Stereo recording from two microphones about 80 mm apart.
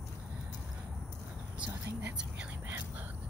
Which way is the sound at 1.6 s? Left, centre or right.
Centre.